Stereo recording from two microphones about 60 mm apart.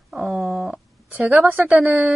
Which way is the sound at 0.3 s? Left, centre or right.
Centre.